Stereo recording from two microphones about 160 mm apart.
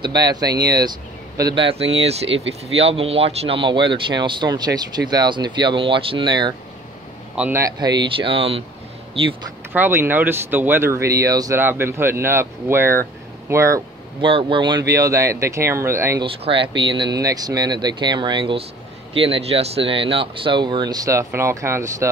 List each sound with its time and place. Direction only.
0.0 s speech: 25° right (ahead or behind)
7.3 s speech: 10° right (ahead or behind)
7.6 s speech: 25° right (ahead or behind)
9.7 s speech: 15° right (ahead or behind)
14.2 s speech: 30° right (ahead or behind)
16.3 s speech: 35° right (ahead or behind); by 21.9 s 20° right (ahead or behind)